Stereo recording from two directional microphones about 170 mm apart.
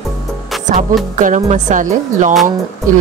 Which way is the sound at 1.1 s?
45° right (ahead or behind).